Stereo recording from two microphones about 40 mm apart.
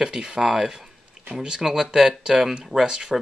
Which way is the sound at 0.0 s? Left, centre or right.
Centre.